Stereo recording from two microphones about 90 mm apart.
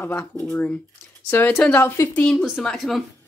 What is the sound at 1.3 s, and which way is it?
Speech, 20° left (ahead or behind).